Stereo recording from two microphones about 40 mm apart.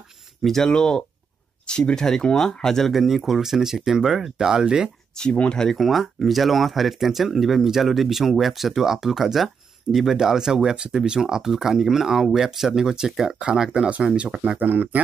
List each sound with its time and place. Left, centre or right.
0.4 s speech: centre
0.7 s speech: centre
2.9 s speech: centre
5.1 s speech: centre
5.8 s speech: centre
14.6 s speech: right